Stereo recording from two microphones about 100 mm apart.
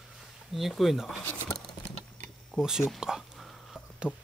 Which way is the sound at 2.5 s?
5° right (ahead or behind).